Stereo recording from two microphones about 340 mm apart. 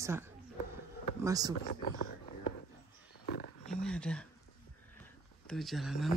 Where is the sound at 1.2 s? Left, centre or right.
Centre.